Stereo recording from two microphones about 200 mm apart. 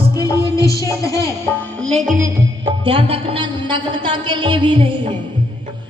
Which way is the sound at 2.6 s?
25° right (ahead or behind).